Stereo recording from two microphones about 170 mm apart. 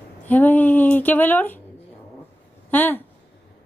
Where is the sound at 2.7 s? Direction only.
10° left (ahead or behind).